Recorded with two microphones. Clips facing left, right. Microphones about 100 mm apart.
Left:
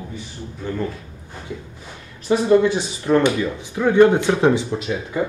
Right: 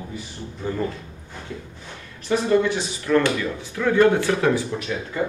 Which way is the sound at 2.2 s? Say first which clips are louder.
Left 4 dB; 20° left (ahead or behind).